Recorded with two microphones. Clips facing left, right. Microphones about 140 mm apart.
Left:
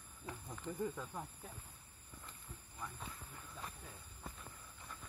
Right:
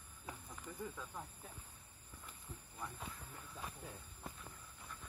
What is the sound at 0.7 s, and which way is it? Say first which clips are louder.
Speech: left 5 dB; 10° left (ahead or behind).